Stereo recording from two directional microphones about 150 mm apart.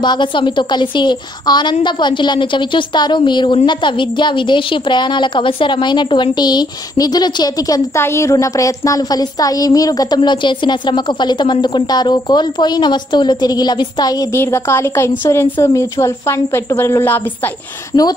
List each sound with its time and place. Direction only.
0.0 s a woman's voice: 30° left (ahead or behind); by 17.2 s 15° left (ahead or behind)